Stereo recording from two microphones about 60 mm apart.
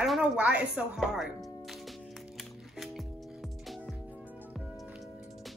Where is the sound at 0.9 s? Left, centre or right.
Centre.